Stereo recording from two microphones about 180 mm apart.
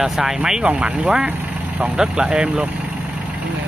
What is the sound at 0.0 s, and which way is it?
Speech, 5° right (ahead or behind).